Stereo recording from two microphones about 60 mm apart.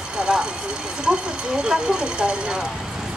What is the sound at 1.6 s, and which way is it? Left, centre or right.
Speech, centre.